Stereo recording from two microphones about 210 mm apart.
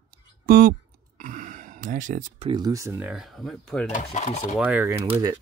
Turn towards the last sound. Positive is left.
turn(degrees=-10)  # may be behind; listen again after turning